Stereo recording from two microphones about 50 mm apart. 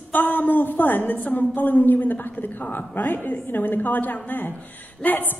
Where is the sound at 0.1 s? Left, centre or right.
Left.